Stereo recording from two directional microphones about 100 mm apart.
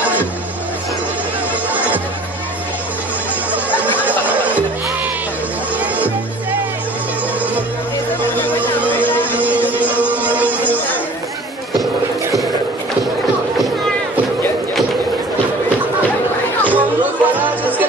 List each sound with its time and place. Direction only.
1.7 s music: 15° right (ahead or behind)
3.5 s music: 15° right (ahead or behind)
5.9 s music: 15° right (ahead or behind)
8.4 s music: 20° left (ahead or behind)
8.9 s a sound: 20° left (ahead or behind)
9.2 s music: 15° right (ahead or behind)
16.6 s music: 15° right (ahead or behind)